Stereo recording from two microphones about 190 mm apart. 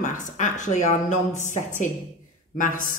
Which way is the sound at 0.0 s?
40° left (ahead or behind).